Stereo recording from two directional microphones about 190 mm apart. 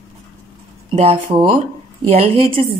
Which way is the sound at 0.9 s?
30° right (ahead or behind).